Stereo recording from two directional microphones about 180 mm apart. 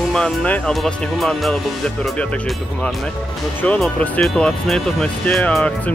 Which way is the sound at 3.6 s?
5° left (ahead or behind).